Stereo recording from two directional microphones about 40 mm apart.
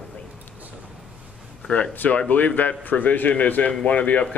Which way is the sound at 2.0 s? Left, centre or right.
Left.